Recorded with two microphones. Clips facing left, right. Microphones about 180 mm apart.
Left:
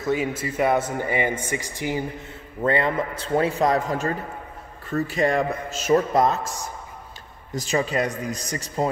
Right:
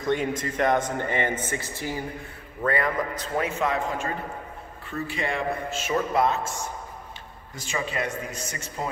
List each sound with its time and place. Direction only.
0.0 s a man's voice: 5° left (ahead or behind); by 8.8 s 35° left (ahead or behind)